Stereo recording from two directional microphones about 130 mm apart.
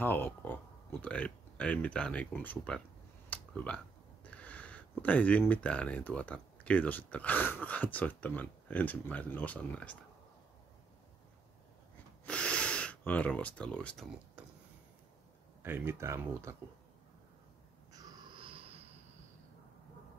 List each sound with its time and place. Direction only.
0.0 s speech: 15° left (ahead or behind)
12.3 s gasp: 10° left (ahead or behind)
15.6 s speech: 20° right (ahead or behind)
17.9 s wheeze: 30° right (ahead or behind)
18.4 s a sound: 45° right (ahead or behind)